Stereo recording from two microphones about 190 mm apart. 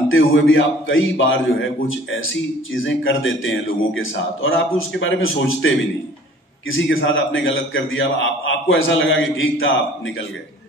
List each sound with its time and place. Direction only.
0.1 s a man's voice: 90° left